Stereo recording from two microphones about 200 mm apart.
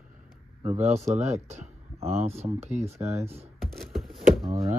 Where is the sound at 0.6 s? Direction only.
35° right (ahead or behind).